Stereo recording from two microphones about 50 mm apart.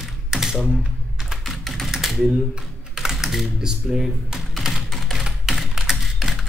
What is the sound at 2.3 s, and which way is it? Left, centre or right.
Computer keyboard, centre.